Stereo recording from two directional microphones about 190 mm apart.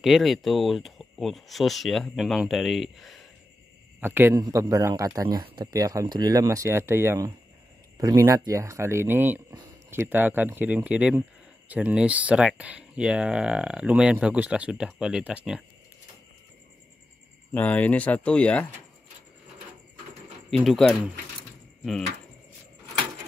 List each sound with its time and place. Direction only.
0.0 s speech: centre (ahead or behind)
4.0 s a man's voice: 10° right (ahead or behind)
17.6 s speech: 10° left (ahead or behind)
20.4 s speech: centre (ahead or behind)